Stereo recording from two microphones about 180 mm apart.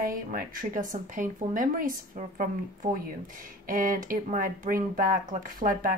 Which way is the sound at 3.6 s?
50° right (ahead or behind).